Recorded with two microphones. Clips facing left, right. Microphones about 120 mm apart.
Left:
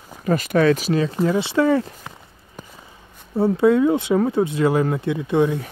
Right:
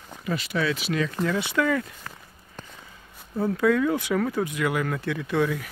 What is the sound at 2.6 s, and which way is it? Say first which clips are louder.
Walk: left 3 dB; 10° left (ahead or behind).